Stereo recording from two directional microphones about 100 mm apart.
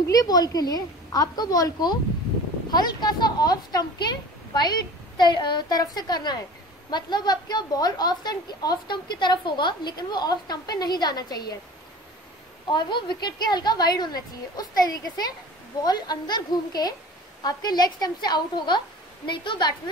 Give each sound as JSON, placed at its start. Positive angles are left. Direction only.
{"t": 0.1, "sound": "a woman's voice", "side_deg": 40}
{"t": 12.7, "sound": "a woman's voice", "side_deg": 50}